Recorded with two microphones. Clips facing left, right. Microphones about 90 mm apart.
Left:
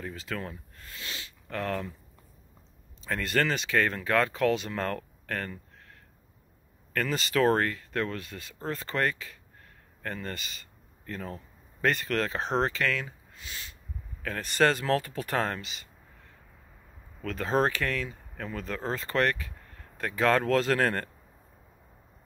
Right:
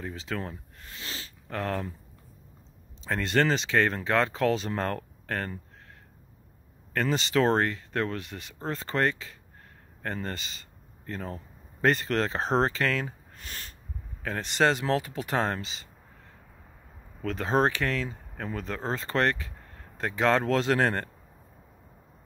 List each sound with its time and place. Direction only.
0.0 s speech: 25° right (ahead or behind)
3.0 s speech: 25° right (ahead or behind)
6.9 s speech: 25° right (ahead or behind)
13.4 s a sound: 50° right (ahead or behind)
14.2 s speech: 25° right (ahead or behind)
17.2 s speech: 25° right (ahead or behind)